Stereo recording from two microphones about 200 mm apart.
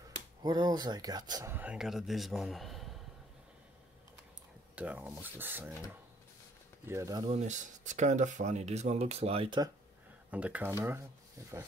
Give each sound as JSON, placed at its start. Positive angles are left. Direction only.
{"t": 0.4, "sound": "speech", "side_deg": -20}
{"t": 4.7, "sound": "speech", "side_deg": -5}
{"t": 6.9, "sound": "speech", "side_deg": -15}
{"t": 7.2, "sound": "speech", "side_deg": -35}
{"t": 10.3, "sound": "speech", "side_deg": -10}